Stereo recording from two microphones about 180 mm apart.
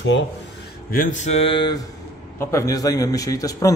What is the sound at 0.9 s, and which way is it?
A man's voice, 45° left (ahead or behind).